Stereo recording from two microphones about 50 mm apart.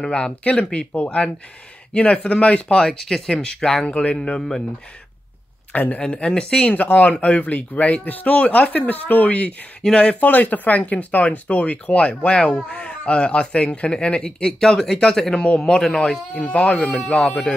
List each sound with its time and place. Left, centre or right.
0.0 s speech: centre
4.4 s speech: centre
5.7 s a man's voice: left
6.1 s speech: centre
9.8 s speech: centre
10.2 s speech: left; by 16.0 s centre
16.4 s speech: left